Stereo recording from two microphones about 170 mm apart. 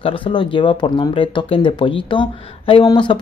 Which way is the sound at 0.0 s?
25° left (ahead or behind).